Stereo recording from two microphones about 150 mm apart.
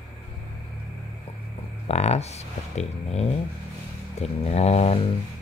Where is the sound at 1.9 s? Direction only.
45° left (ahead or behind).